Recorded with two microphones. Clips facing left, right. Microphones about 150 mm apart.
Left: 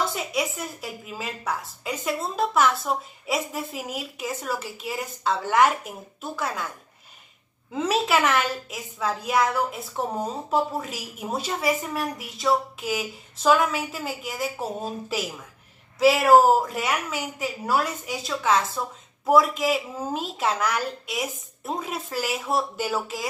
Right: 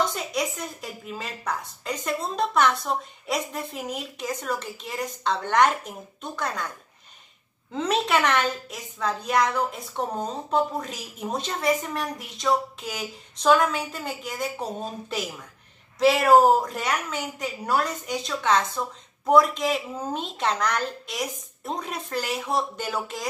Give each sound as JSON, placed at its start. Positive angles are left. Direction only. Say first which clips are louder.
{"t": 0.0, "sound": "a woman's voice", "louder": "even", "side_deg": 5}
{"t": 7.7, "sound": "a woman's voice", "louder": "left 1 dB", "side_deg": 5}